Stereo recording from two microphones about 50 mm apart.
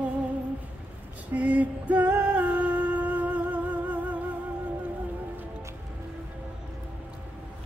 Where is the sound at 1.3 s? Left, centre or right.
Right.